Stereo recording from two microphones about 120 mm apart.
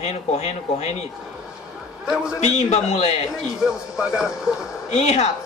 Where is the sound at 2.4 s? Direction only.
70° left (ahead or behind).